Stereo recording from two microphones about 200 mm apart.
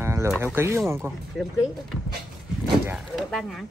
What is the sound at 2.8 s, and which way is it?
Speech, 5° right (ahead or behind).